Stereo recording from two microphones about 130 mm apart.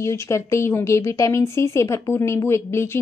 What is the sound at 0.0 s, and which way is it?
Speech, 20° left (ahead or behind).